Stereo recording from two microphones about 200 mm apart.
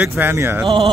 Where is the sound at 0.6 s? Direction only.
30° right (ahead or behind).